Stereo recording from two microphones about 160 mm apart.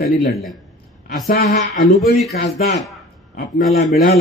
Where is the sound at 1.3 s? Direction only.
60° left (ahead or behind).